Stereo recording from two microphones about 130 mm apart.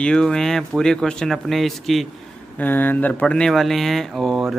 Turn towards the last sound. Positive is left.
turn(degrees=0)  # may be behind; listen again after turning